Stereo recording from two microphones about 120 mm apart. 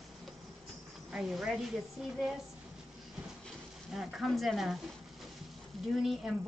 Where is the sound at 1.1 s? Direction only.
5° right (ahead or behind).